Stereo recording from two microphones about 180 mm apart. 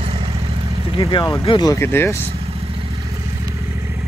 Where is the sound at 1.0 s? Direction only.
25° left (ahead or behind).